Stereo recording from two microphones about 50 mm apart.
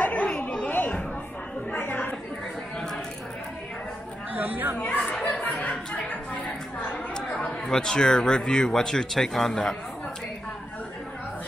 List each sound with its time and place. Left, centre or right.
0.0 s chatter: left
4.4 s speech: right
5.2 s chatter: left
7.2 s speech: centre